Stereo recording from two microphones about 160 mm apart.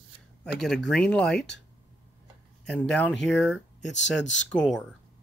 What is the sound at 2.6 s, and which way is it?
Speech, 5° left (ahead or behind).